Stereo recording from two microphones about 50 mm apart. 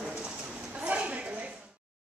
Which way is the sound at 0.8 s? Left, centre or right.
Right.